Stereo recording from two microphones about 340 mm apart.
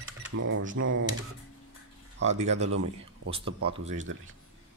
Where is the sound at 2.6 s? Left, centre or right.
Right.